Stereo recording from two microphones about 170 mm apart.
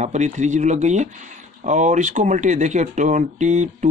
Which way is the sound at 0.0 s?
45° right (ahead or behind).